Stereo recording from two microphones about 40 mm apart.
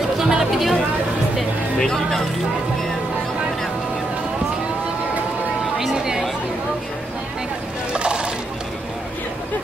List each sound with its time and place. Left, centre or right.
0.2 s music: centre
1.8 s speech: centre
5.8 s a sound: centre
7.9 s music: right